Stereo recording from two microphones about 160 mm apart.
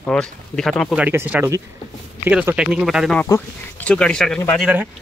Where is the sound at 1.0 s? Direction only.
10° right (ahead or behind).